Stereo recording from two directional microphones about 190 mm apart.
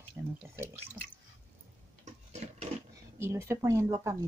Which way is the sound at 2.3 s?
35° right (ahead or behind).